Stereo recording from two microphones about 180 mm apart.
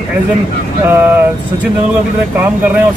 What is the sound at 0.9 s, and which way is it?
Speech, 10° right (ahead or behind).